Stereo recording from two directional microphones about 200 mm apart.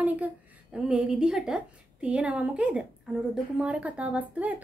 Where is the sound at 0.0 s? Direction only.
5° right (ahead or behind).